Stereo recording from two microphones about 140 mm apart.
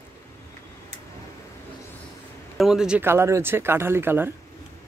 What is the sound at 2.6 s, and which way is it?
Speech, 5° right (ahead or behind).